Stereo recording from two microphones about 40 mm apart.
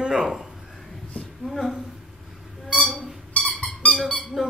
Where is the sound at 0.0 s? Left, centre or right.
Right.